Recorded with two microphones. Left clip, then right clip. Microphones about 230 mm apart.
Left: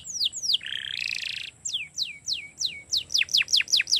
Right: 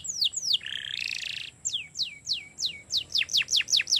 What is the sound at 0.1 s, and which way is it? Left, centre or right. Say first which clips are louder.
Bird: left 1 dB; left.